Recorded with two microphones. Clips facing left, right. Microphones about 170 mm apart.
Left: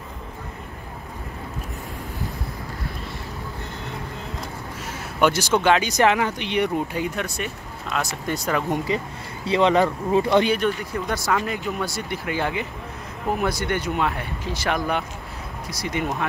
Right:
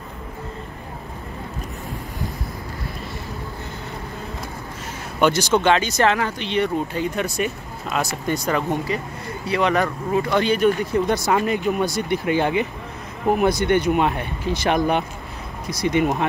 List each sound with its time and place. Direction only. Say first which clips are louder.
5.2 s speech: right 2 dB; 5° left (ahead or behind)
7.2 s speech: right 5 dB; 10° right (ahead or behind)
8.8 s speech: even; 20° left (ahead or behind)
10.9 s speech: right 5 dB; 20° right (ahead or behind)